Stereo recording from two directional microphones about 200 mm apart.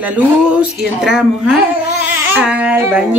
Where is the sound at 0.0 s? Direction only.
5° right (ahead or behind).